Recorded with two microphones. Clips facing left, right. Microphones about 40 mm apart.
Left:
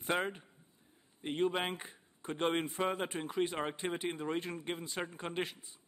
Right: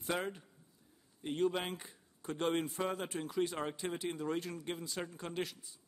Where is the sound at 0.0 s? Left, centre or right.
Left.